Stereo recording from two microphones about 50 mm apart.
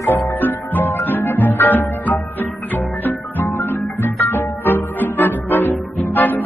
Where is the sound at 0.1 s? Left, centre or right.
Left.